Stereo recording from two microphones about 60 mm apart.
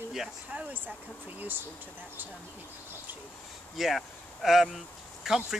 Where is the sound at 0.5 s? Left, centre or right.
Right.